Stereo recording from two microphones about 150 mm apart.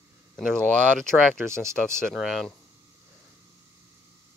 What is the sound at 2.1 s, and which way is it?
Speech, centre (ahead or behind).